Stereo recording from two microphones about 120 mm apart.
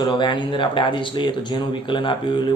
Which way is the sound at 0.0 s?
40° left (ahead or behind).